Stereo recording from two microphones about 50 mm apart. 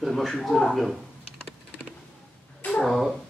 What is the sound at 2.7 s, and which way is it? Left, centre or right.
Cat, centre.